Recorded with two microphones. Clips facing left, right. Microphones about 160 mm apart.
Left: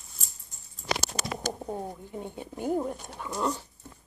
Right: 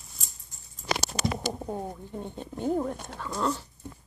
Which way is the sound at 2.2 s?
10° left (ahead or behind).